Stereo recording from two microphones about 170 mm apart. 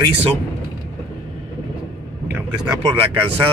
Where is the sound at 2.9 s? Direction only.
30° right (ahead or behind).